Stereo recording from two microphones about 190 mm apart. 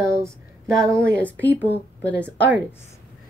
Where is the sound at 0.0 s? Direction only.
15° right (ahead or behind).